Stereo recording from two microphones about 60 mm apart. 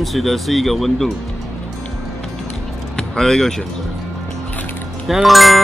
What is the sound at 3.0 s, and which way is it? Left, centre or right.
Speech, centre.